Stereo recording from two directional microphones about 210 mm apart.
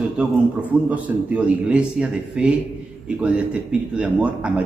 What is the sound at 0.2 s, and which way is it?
A man's voice, 5° right (ahead or behind).